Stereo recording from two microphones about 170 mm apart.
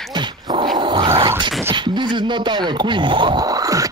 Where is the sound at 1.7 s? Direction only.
25° right (ahead or behind).